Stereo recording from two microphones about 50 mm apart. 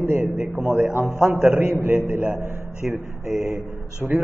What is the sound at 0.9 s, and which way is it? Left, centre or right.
A man's voice, right.